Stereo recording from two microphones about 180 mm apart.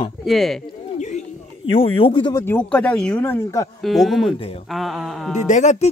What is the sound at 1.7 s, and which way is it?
Speech, 30° left (ahead or behind).